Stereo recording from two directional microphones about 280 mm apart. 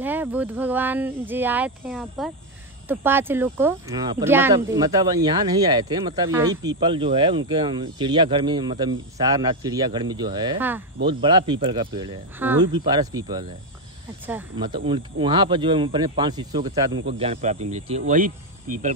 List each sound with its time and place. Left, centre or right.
0.0 s speech: centre
14.7 s speech: centre